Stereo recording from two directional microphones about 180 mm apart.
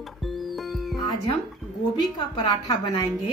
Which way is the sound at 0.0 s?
Centre (ahead or behind).